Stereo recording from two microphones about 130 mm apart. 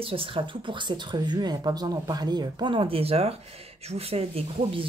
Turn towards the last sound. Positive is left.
turn(degrees=-50)  # may be behind; listen again after turning